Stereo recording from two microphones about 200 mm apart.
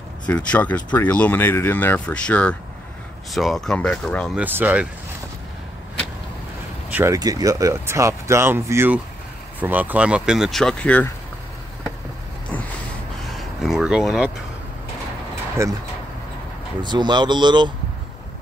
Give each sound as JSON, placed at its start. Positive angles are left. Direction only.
{"t": 0.3, "sound": "speech", "side_deg": 5}
{"t": 4.4, "sound": "speech", "side_deg": -10}
{"t": 6.9, "sound": "speech", "side_deg": -10}
{"t": 13.4, "sound": "a sound", "side_deg": 0}
{"t": 15.6, "sound": "speech", "side_deg": -15}
{"t": 16.8, "sound": "speech", "side_deg": -20}